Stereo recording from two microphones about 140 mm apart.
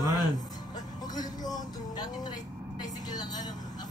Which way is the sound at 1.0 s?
30° left (ahead or behind).